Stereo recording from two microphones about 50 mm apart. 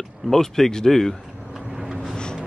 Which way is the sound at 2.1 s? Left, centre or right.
Centre.